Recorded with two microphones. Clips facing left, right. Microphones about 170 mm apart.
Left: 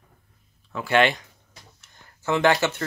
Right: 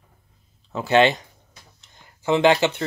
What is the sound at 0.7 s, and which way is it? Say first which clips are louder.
Speech: right 3 dB; 25° right (ahead or behind).